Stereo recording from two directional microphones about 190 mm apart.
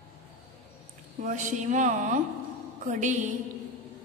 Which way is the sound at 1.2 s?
40° right (ahead or behind).